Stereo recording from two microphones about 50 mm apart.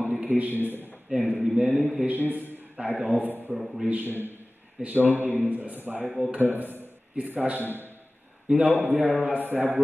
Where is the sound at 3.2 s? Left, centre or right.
Right.